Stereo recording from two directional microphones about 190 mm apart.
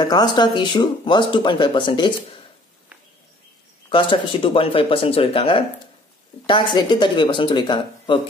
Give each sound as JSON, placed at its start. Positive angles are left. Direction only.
{"t": 0.0, "sound": "speech", "side_deg": 20}
{"t": 3.9, "sound": "speech", "side_deg": 30}